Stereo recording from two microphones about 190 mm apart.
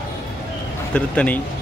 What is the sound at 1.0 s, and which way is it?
Speech, 5° left (ahead or behind).